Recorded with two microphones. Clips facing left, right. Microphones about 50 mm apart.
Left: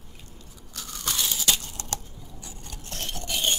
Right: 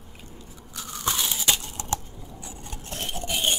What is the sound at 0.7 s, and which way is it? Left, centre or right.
Crunch, centre.